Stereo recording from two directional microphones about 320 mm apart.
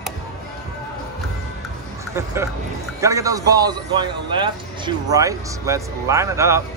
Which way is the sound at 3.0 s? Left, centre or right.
Centre.